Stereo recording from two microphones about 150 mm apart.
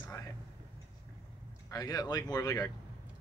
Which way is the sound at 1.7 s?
25° left (ahead or behind).